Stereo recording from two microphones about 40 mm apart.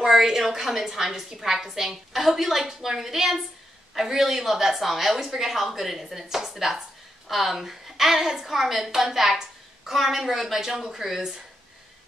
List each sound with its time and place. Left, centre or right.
0.0 s a woman's voice: centre